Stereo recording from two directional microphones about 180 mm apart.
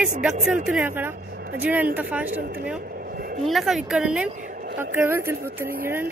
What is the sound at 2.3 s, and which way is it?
Speech, 55° right (ahead or behind).